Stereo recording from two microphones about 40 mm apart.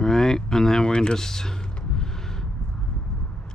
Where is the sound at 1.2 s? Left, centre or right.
Centre.